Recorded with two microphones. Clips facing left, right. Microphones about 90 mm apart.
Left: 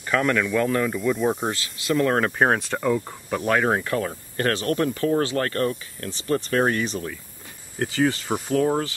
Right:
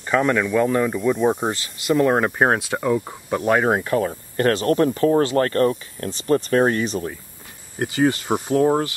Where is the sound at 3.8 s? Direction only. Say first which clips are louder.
Right 4 dB; 25° right (ahead or behind).